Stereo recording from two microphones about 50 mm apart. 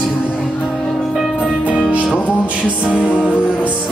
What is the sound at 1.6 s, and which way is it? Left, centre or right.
Music, right.